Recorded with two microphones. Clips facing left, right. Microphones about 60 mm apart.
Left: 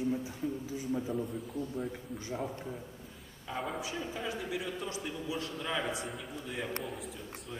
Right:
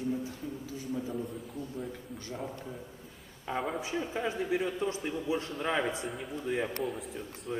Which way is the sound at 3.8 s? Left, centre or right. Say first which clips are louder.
Right 4 dB; right.